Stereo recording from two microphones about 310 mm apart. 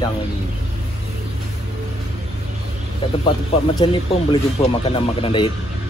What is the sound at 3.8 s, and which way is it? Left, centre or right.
Speech, centre.